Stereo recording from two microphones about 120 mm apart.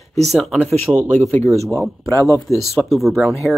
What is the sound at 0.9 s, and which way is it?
Speech, 20° right (ahead or behind).